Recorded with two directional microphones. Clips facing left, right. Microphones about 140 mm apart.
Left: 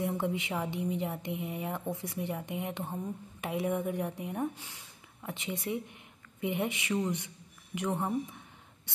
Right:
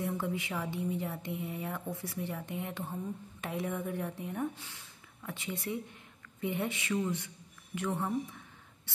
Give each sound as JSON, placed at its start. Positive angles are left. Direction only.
{"t": 0.0, "sound": "a woman's voice", "side_deg": 20}